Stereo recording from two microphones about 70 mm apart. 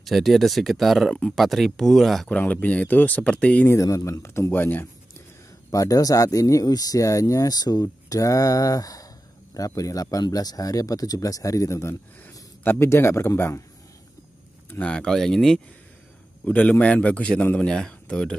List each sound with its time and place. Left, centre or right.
0.0 s speech: centre
2.2 s speech: left
3.8 s speech: left
4.5 s speech: left
5.7 s speech: left
10.2 s speech: left
14.8 s speech: centre
16.4 s speech: left
17.6 s speech: centre